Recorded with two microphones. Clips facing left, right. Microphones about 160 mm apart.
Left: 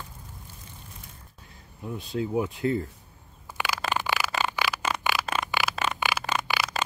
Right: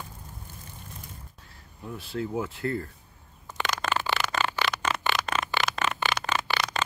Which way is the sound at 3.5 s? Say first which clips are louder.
Even; 5° left (ahead or behind).